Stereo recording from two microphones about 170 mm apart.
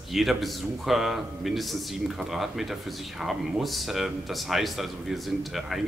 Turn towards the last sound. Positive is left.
turn(degrees=0)  # may be behind; listen again after turning